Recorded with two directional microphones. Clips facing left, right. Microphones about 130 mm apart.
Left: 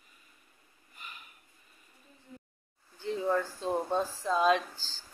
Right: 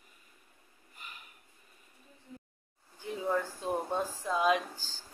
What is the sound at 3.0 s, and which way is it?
Speech, 10° right (ahead or behind).